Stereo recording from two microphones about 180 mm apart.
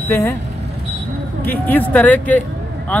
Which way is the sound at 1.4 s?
10° left (ahead or behind).